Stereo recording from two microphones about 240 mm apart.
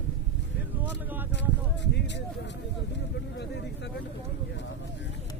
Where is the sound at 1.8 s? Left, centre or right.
Left.